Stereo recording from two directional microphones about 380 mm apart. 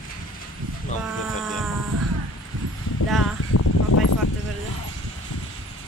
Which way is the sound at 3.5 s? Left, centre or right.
Left.